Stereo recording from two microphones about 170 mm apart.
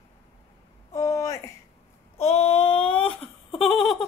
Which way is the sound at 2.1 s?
40° left (ahead or behind).